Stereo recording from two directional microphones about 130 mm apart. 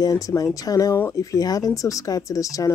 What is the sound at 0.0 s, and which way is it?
Speech, 25° left (ahead or behind).